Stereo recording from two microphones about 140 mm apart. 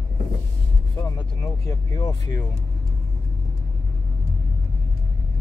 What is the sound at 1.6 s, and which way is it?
Speech, 25° left (ahead or behind).